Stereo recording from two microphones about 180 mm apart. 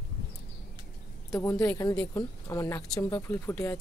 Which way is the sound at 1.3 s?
15° left (ahead or behind).